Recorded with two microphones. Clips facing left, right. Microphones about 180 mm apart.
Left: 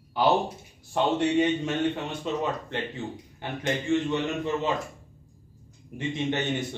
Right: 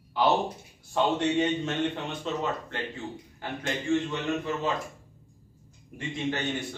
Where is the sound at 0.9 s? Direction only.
15° left (ahead or behind).